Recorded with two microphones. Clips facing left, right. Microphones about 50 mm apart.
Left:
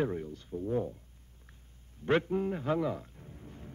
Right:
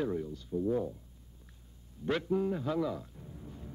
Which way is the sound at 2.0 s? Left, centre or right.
Left.